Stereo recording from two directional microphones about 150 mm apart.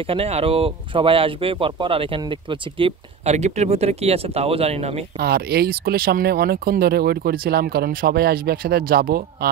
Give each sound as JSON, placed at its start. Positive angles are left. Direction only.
{"t": 0.0, "sound": "speech", "side_deg": -40}
{"t": 3.3, "sound": "speech", "side_deg": -50}
{"t": 5.2, "sound": "speech", "side_deg": -90}